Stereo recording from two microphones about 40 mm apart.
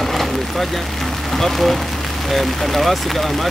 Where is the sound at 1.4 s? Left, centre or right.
Centre.